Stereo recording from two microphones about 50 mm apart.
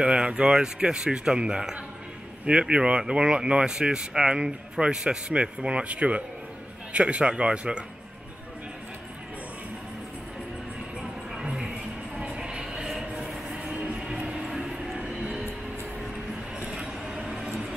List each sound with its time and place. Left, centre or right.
0.0 s speech: centre
12.4 s music: centre
17.0 s vehicle: centre